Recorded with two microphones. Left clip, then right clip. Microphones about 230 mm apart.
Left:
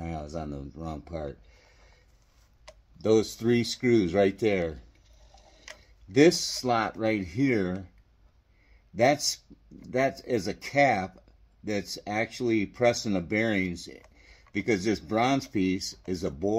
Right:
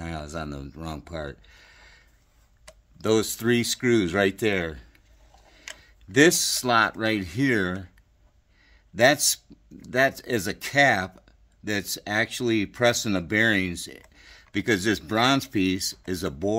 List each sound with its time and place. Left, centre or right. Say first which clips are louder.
0.0 s speech: right 2 dB; right
3.0 s speech: right 1 dB; right
6.1 s speech: right 2 dB; right
9.0 s speech: right 4 dB; right